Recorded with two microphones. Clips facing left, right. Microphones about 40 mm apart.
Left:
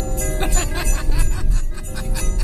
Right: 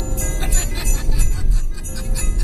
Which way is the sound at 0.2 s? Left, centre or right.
Centre.